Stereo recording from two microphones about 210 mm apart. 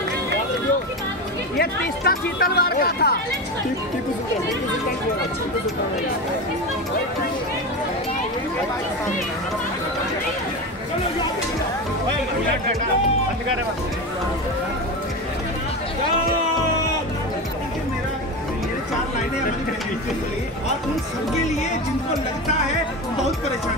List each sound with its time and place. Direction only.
1.6 s speech: 45° left (ahead or behind)